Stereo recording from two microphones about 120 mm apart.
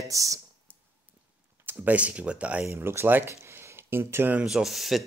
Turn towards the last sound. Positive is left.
turn(degrees=0)  # may be behind; listen again after turning